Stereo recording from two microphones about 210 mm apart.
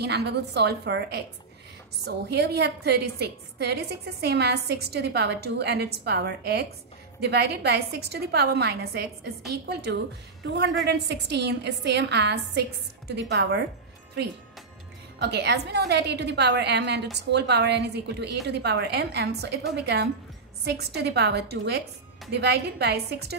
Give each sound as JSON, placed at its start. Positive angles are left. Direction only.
{"t": 0.0, "sound": "a woman's voice", "side_deg": -50}
{"t": 15.1, "sound": "a woman's voice", "side_deg": -55}